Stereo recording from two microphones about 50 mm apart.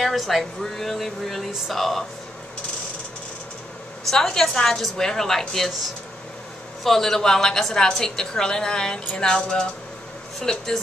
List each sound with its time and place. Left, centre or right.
0.0 s speech: centre
4.1 s a woman's voice: centre
6.8 s a woman's voice: centre